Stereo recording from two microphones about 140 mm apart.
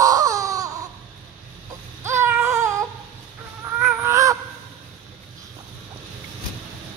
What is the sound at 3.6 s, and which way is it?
Fowl, 15° right (ahead or behind).